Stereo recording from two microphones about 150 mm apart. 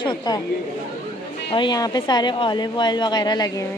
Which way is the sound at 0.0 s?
30° left (ahead or behind).